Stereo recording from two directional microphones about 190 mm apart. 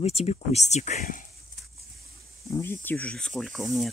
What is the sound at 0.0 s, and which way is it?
Speech, 35° left (ahead or behind).